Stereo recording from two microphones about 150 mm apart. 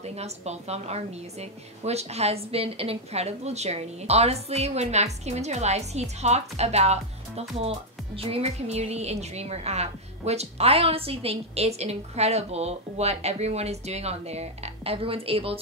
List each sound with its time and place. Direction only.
0.0 s a woman's voice: 45° right (ahead or behind)